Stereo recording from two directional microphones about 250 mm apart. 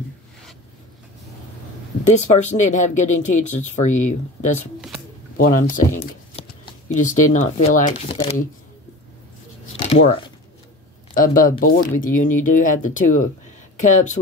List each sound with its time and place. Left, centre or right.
2.0 s speech: left
9.8 s shuffling cards: left
11.1 s speech: left